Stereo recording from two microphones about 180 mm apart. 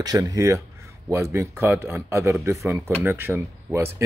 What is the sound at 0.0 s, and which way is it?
A man's voice, 20° right (ahead or behind).